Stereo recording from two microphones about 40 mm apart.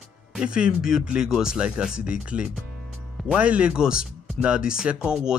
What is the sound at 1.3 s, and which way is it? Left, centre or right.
Speech, centre.